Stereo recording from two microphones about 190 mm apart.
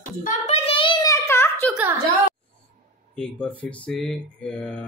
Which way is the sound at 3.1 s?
5° left (ahead or behind).